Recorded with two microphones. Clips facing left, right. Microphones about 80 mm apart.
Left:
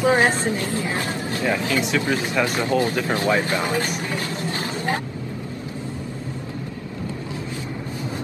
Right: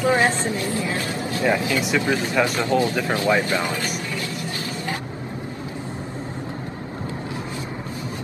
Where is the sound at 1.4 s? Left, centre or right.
Right.